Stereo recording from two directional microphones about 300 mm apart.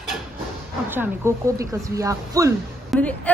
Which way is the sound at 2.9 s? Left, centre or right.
Centre.